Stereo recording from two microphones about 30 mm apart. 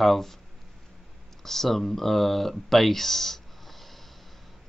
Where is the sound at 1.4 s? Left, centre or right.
Centre.